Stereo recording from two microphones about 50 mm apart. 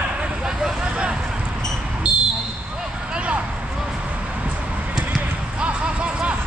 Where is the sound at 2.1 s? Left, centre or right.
Centre.